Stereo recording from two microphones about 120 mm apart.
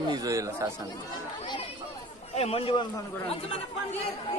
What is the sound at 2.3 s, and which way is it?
Speech, 55° left (ahead or behind).